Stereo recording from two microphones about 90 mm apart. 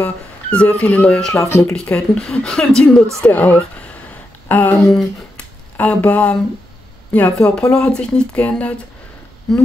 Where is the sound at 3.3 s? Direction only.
20° left (ahead or behind).